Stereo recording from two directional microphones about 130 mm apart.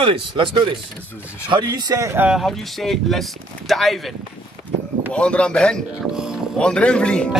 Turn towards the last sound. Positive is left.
turn(degrees=5)  # may be behind; listen again after turning